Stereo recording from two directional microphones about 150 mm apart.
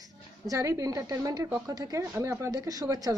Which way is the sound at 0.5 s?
20° right (ahead or behind).